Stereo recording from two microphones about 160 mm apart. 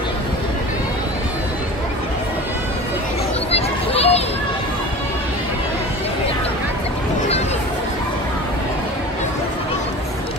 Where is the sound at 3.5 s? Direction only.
40° left (ahead or behind).